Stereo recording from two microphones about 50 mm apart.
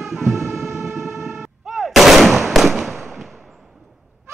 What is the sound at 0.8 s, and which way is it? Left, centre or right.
Vehicle, centre.